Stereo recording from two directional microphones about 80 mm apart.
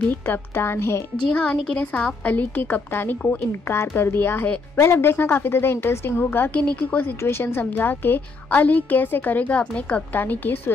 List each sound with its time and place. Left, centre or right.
0.1 s a woman's voice: left
1.3 s a woman's voice: centre